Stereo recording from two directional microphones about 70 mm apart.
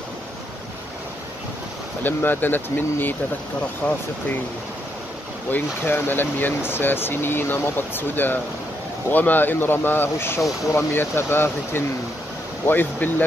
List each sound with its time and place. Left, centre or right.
2.0 s speech: left
5.5 s speech: left